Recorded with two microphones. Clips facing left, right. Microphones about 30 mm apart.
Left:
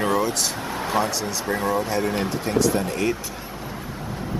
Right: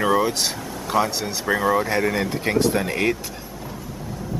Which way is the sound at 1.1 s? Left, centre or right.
Right.